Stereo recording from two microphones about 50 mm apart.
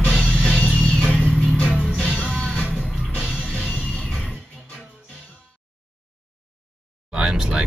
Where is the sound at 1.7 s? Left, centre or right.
Right.